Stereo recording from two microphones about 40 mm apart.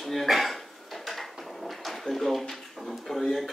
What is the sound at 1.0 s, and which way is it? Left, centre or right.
Drawer open or close, centre.